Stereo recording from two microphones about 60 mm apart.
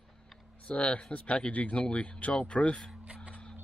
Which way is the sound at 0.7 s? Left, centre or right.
Left.